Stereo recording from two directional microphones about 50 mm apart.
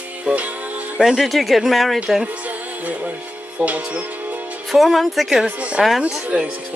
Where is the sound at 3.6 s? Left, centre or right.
Right.